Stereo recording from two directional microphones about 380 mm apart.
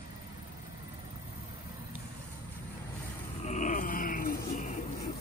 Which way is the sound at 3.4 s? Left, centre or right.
Centre.